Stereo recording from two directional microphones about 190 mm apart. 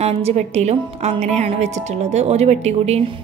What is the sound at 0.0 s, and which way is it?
Speech, 35° right (ahead or behind).